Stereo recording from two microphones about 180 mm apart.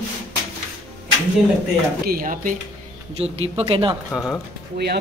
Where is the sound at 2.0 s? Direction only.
55° right (ahead or behind).